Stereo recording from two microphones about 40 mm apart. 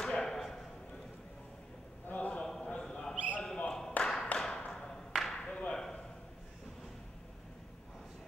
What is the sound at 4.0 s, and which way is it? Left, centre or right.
Clapping, left.